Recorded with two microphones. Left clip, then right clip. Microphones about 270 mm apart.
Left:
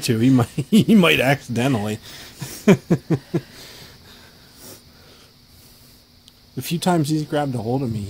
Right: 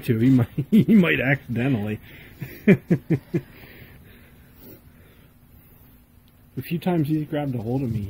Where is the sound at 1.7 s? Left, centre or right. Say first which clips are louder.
Left 2 dB; left.